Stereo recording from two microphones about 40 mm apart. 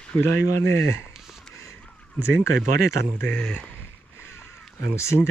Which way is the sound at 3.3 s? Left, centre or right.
Left.